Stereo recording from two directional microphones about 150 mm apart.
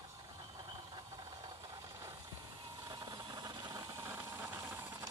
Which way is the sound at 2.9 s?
25° right (ahead or behind).